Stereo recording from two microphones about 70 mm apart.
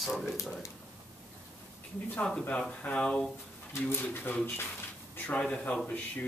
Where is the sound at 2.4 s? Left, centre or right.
Centre.